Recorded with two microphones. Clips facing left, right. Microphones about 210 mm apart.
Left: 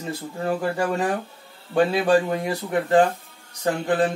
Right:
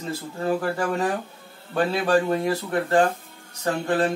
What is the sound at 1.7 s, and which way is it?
Speech, 15° left (ahead or behind).